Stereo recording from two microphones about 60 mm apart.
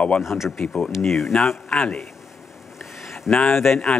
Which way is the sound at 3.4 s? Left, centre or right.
Centre.